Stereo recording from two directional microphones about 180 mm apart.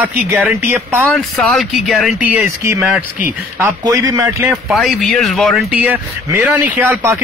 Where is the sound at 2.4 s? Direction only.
15° right (ahead or behind).